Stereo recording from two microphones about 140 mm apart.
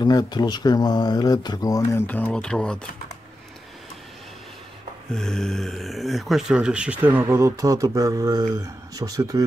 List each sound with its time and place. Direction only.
0.0 s speech: 30° left (ahead or behind); by 2.8 s 5° left (ahead or behind)
5.1 s speech: 5° left (ahead or behind); by 9.4 s 25° right (ahead or behind)